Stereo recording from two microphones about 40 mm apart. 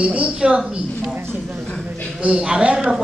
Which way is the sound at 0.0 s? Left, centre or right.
Right.